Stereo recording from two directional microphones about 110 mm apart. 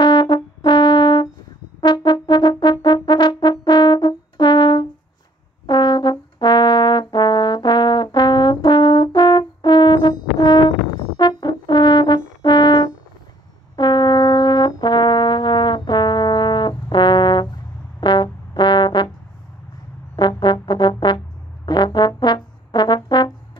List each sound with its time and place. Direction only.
0.0 s brass instrument: 45° left (ahead or behind)
20.2 s brass instrument: 45° left (ahead or behind)